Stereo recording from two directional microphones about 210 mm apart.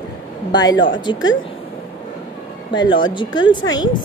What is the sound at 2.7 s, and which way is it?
A woman's voice, 20° left (ahead or behind).